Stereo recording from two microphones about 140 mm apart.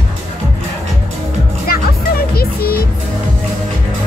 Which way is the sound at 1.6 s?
90° left.